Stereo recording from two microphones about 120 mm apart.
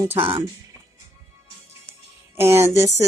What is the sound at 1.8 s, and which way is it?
Music, 20° right (ahead or behind).